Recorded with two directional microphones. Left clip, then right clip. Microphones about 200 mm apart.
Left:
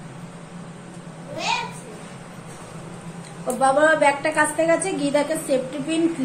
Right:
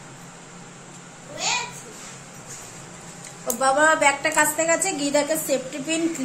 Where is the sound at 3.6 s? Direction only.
15° right (ahead or behind).